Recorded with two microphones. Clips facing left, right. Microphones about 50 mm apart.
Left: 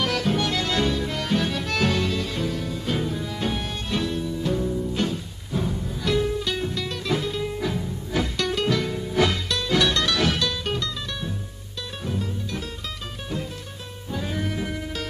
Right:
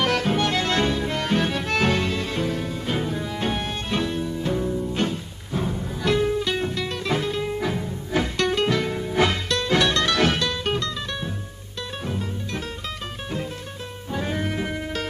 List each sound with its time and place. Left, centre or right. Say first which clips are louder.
0.0 s music: right 2 dB; right
12.0 s music: left 2 dB; right
14.1 s music: right 2 dB; right